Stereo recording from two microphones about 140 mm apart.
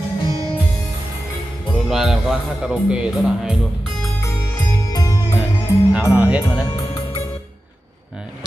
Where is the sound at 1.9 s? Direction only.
Centre (ahead or behind).